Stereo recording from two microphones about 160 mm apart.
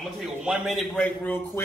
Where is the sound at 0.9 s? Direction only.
10° left (ahead or behind).